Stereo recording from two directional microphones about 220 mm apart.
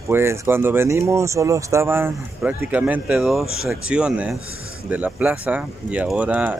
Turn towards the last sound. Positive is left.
turn(degrees=-5)  # may be behind; listen again after turning